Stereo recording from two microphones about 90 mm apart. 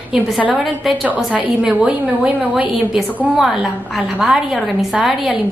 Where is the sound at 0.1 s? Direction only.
15° right (ahead or behind).